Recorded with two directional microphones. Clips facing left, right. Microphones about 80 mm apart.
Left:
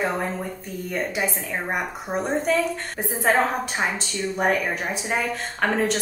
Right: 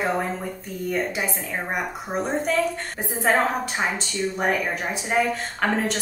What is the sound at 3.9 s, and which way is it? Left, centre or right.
A woman's voice, centre.